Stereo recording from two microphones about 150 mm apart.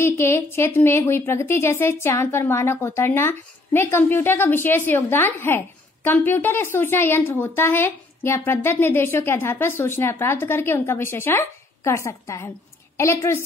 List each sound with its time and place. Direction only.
0.0 s a woman's voice: 15° left (ahead or behind)